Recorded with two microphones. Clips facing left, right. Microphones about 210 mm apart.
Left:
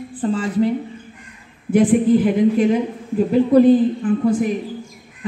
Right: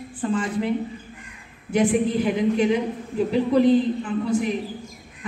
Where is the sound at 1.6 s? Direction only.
50° left (ahead or behind).